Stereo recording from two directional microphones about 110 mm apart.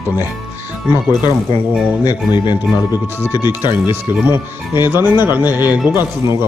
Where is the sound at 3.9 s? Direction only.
20° right (ahead or behind).